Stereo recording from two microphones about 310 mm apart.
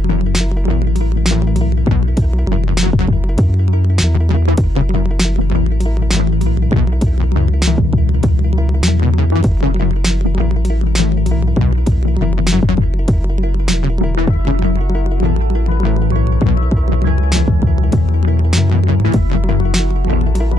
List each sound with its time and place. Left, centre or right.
1.2 s music: centre
2.7 s music: centre
6.0 s music: centre
12.4 s music: centre